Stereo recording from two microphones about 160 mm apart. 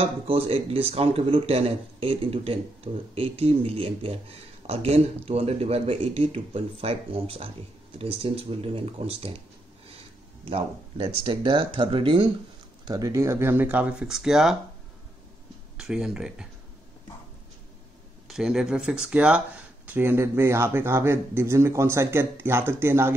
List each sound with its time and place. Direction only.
0.0 s speech: 35° right (ahead or behind)
10.4 s speech: 35° right (ahead or behind)
12.8 s speech: 20° right (ahead or behind); by 14.6 s 5° right (ahead or behind)
15.8 s speech: 5° right (ahead or behind)
18.3 s speech: 5° right (ahead or behind)